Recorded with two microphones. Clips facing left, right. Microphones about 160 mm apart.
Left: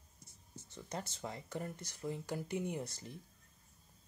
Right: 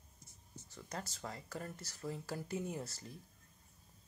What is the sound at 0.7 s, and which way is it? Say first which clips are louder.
Speech: left 2 dB; 20° left (ahead or behind).